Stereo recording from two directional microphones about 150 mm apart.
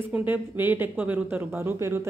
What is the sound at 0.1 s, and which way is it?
A woman's voice, 10° right (ahead or behind).